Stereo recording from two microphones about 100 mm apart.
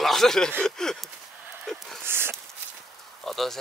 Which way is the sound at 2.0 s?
25° right (ahead or behind).